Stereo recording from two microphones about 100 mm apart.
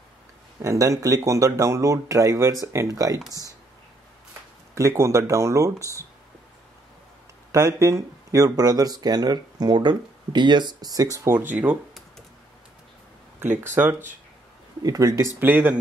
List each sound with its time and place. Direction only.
0.6 s speech: 35° right (ahead or behind)
4.3 s speech: 30° right (ahead or behind)
7.5 s speech: 30° right (ahead or behind)
11.3 s speech: 15° right (ahead or behind)
13.4 s speech: 20° right (ahead or behind)
14.8 s speech: 35° right (ahead or behind)
15.3 s speech: 15° right (ahead or behind)